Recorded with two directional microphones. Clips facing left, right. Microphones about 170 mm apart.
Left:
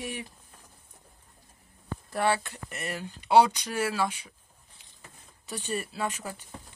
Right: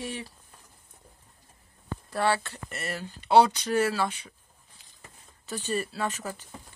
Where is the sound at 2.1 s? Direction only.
15° left (ahead or behind).